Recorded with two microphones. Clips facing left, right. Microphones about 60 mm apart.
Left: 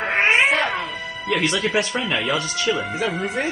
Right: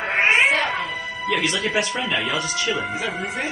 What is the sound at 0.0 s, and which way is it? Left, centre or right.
Cat, centre.